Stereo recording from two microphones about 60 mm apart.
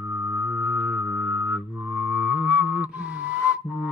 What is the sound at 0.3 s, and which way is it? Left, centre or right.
Music, right.